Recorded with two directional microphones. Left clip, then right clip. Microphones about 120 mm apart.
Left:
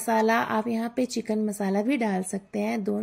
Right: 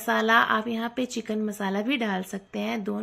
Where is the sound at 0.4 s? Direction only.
25° left (ahead or behind).